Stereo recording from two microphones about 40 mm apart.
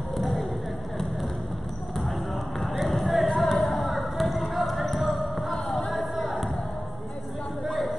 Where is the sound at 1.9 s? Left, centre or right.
Centre.